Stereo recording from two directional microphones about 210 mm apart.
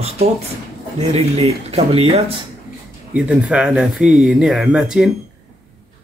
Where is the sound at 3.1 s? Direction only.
5° right (ahead or behind).